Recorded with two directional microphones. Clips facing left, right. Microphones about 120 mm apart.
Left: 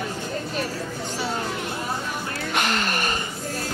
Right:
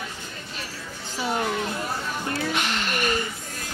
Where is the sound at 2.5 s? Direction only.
45° left (ahead or behind).